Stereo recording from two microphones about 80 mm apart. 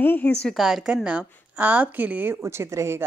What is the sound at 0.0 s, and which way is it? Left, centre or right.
Speech, left.